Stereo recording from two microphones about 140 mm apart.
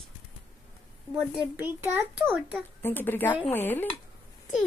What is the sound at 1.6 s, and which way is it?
A child's voice, 15° right (ahead or behind).